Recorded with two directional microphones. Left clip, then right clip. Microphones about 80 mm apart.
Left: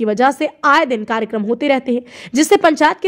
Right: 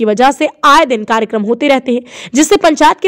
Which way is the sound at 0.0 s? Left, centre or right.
Right.